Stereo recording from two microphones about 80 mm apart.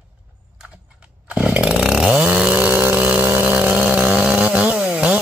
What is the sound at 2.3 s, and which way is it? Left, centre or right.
Chainsaw, centre.